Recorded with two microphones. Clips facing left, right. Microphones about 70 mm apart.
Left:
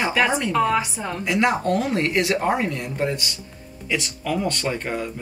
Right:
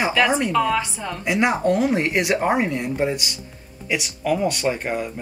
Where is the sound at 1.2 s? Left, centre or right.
Centre.